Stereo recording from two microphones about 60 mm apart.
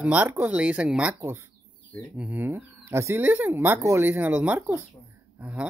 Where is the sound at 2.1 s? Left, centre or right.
Right.